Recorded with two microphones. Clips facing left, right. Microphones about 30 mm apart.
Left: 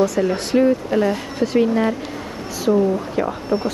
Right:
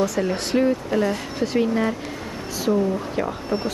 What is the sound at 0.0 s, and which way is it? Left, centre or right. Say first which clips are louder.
Speech: left 4 dB; centre.